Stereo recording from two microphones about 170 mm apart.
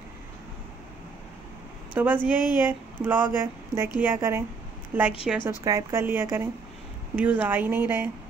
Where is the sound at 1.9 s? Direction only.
10° right (ahead or behind).